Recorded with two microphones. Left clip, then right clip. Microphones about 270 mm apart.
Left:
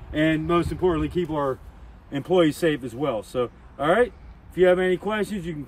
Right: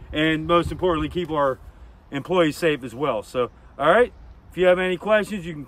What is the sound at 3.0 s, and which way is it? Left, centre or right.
Speech, centre.